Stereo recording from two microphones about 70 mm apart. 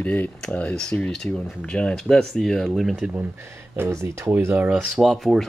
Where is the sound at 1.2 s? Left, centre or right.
Left.